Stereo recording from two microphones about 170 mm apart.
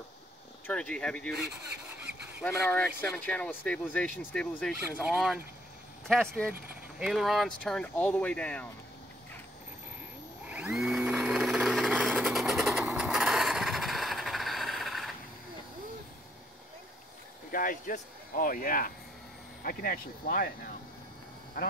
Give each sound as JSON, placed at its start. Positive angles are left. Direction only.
{"t": 0.7, "sound": "speech", "side_deg": 5}
{"t": 10.4, "sound": "a sound", "side_deg": -10}
{"t": 12.1, "sound": "vehicle", "side_deg": 0}
{"t": 17.5, "sound": "speech", "side_deg": 55}